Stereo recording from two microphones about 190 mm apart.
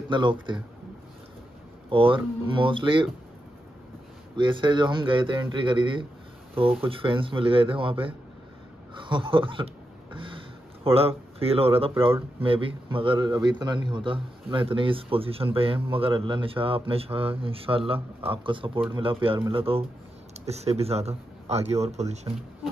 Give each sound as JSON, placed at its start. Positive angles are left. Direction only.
{"t": 0.1, "sound": "a man's voice", "side_deg": -25}
{"t": 1.9, "sound": "a man's voice", "side_deg": -30}
{"t": 4.4, "sound": "a man's voice", "side_deg": -25}